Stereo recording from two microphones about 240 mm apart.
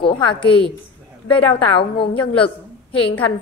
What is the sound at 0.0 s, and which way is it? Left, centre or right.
A woman's voice, left.